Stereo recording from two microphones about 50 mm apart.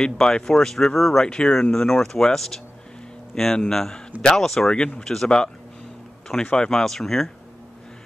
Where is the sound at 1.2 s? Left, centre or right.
Centre.